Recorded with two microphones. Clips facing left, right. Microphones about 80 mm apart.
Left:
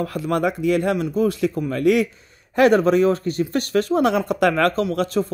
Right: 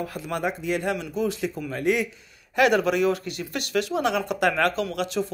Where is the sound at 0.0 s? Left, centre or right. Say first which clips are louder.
Left 7 dB; left.